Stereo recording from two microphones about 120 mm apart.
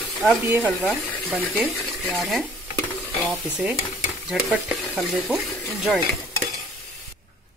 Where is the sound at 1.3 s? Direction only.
10° right (ahead or behind).